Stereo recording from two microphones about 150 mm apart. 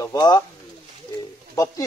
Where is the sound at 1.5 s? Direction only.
20° left (ahead or behind).